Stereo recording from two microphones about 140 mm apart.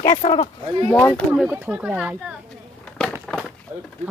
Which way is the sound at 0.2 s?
40° left (ahead or behind).